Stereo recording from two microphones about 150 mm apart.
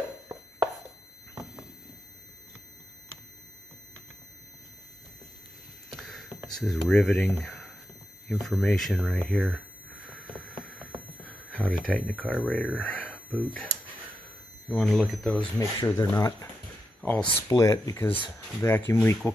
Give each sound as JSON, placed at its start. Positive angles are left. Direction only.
{"t": 5.9, "sound": "a sound", "side_deg": 0}
{"t": 6.6, "sound": "speech", "side_deg": 5}
{"t": 10.0, "sound": "a sound", "side_deg": 5}
{"t": 10.9, "sound": "speech", "side_deg": 5}
{"t": 14.7, "sound": "speech", "side_deg": 0}
{"t": 15.8, "sound": "speech", "side_deg": 25}
{"t": 17.0, "sound": "speech", "side_deg": 15}